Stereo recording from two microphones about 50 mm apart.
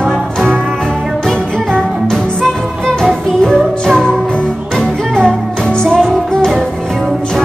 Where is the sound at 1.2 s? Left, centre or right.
Centre.